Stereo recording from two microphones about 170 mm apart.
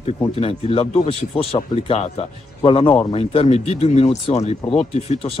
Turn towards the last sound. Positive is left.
turn(degrees=40)  # may be behind; listen again after turning